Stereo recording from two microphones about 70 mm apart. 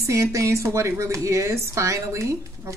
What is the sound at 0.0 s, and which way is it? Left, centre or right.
Speech, right.